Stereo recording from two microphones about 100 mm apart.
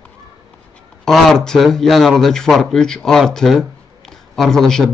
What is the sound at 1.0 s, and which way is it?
A man's voice, 5° left (ahead or behind).